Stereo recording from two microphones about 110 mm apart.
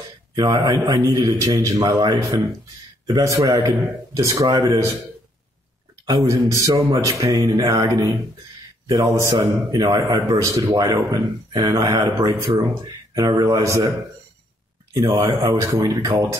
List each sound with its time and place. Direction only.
0.4 s speech: 35° right (ahead or behind)
6.0 s speech: 35° right (ahead or behind)
15.0 s speech: 30° right (ahead or behind)
15.7 s speech: 45° right (ahead or behind)